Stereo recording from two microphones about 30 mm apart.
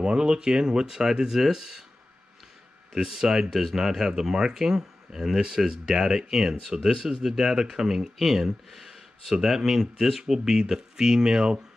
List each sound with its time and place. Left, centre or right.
0.0 s speech: right
1.4 s speech: centre
3.0 s speech: centre